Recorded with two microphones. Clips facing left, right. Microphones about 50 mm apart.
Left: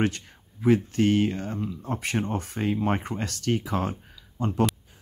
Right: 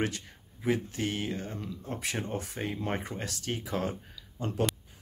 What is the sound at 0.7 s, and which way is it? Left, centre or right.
Speech, left.